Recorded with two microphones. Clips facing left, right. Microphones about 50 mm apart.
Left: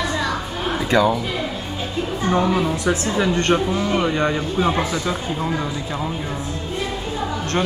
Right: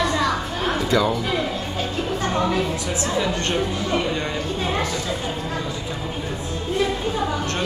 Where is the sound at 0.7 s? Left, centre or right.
Centre.